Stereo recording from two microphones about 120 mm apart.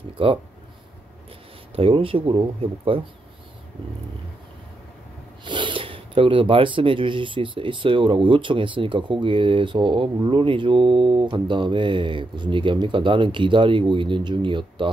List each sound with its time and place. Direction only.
0.2 s speech: 45° right (ahead or behind)
1.8 s speech: 50° right (ahead or behind)
5.4 s speech: 40° right (ahead or behind)